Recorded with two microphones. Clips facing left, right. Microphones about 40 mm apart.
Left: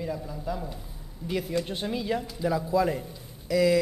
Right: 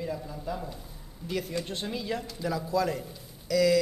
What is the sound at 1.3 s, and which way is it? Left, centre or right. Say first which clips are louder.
A man's voice: left 3 dB; centre.